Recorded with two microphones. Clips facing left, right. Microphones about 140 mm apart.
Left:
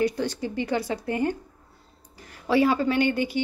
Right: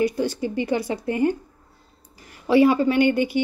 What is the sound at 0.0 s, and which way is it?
A woman's voice, 10° right (ahead or behind).